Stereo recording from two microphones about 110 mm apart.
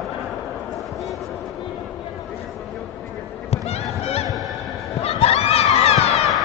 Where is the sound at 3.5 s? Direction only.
70° left (ahead or behind).